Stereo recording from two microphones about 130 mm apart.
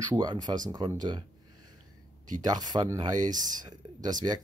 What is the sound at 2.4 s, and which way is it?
Speech, 30° right (ahead or behind).